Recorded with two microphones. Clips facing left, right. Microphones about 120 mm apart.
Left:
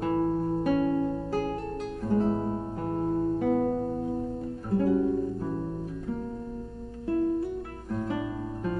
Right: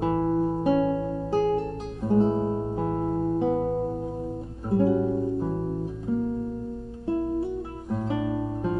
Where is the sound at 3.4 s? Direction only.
25° right (ahead or behind).